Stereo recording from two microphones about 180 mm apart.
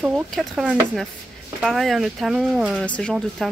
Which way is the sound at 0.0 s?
Centre (ahead or behind).